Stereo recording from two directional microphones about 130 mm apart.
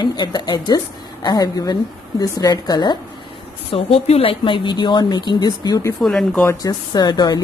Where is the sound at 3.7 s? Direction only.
50° left (ahead or behind); by 5.9 s 30° left (ahead or behind).